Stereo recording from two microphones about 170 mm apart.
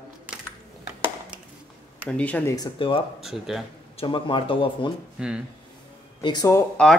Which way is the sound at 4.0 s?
30° left (ahead or behind).